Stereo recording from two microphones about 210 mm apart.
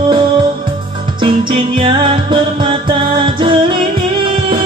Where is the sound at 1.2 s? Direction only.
25° right (ahead or behind).